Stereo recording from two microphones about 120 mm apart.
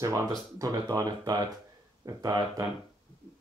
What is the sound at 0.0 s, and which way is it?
Speech, 25° right (ahead or behind).